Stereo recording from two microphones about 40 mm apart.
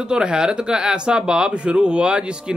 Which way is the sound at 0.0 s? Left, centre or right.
Right.